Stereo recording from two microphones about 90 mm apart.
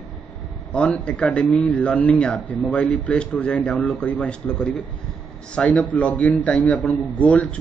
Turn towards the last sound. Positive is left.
turn(degrees=15)  # may be behind; listen again after turning